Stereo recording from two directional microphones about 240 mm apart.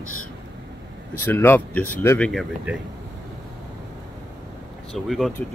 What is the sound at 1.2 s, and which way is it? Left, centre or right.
Speech, centre.